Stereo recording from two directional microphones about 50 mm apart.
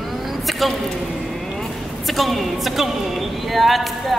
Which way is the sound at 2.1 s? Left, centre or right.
Centre.